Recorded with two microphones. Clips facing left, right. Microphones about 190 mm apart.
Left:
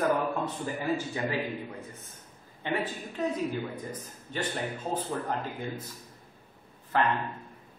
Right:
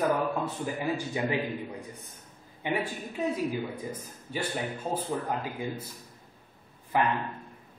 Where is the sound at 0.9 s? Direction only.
20° right (ahead or behind).